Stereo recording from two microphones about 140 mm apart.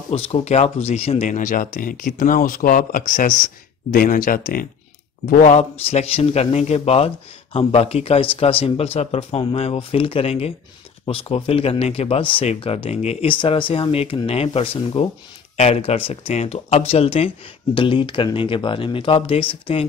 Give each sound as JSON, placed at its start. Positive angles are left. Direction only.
{"t": 0.1, "sound": "speech", "side_deg": 45}
{"t": 1.3, "sound": "speech", "side_deg": 75}